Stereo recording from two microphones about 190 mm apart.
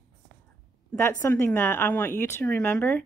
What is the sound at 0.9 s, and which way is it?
Speech, 10° left (ahead or behind).